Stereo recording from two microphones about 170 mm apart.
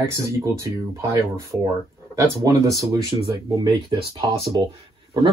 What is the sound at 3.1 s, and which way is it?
Speech, 40° right (ahead or behind).